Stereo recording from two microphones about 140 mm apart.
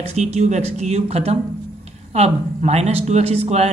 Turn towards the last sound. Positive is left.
turn(degrees=-50)  # may be behind; listen again after turning